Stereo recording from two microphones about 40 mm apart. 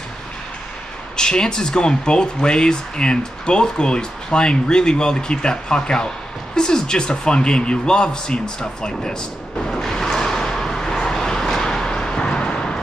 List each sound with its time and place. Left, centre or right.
1.1 s speech: centre
9.7 s vehicle: centre
12.2 s vehicle: left